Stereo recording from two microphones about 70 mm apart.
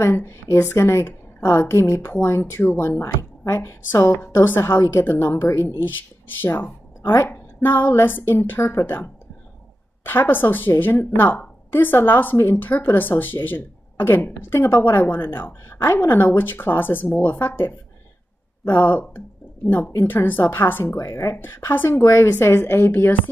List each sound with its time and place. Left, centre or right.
0.2 s a woman's voice: left
20.9 s a woman's voice: left